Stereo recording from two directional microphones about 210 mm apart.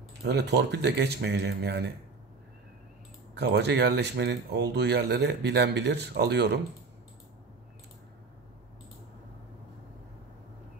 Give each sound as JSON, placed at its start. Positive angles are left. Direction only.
{"t": 0.2, "sound": "speech", "side_deg": -55}
{"t": 3.3, "sound": "speech", "side_deg": -50}